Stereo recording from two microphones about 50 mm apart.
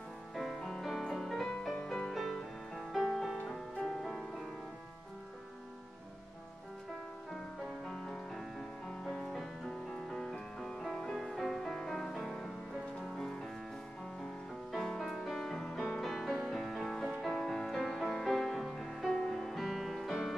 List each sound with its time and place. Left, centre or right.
0.3 s music: centre
2.1 s music: centre
7.8 s music: centre
8.1 s music: centre
14.7 s music: centre